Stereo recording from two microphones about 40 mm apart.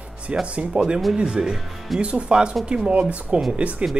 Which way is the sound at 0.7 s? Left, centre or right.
Right.